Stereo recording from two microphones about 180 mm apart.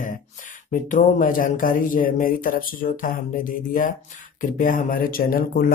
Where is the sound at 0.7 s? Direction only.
45° left (ahead or behind).